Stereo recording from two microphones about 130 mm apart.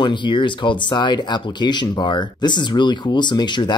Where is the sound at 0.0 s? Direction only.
35° left (ahead or behind).